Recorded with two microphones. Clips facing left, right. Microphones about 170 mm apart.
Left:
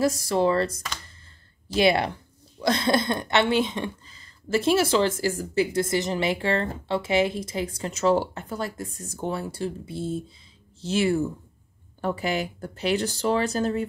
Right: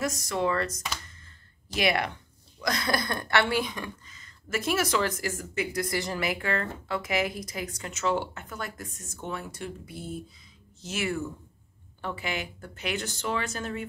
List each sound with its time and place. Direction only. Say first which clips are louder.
0.0 s speech: left 6 dB; 30° left (ahead or behind)